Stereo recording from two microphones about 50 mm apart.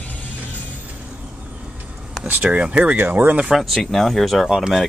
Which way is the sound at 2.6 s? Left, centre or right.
Right.